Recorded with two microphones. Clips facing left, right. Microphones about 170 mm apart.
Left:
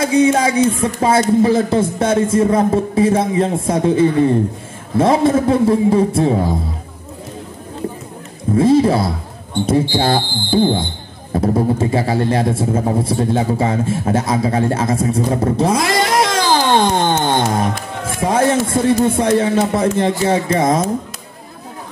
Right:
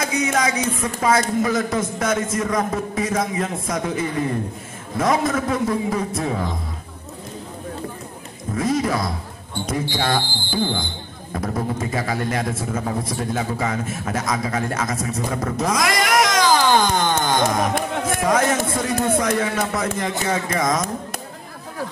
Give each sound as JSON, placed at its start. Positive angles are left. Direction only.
{"t": 0.0, "sound": "a man's voice", "side_deg": 30}
{"t": 8.5, "sound": "a man's voice", "side_deg": 30}